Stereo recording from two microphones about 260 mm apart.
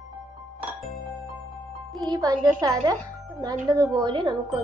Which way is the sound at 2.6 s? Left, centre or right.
Centre.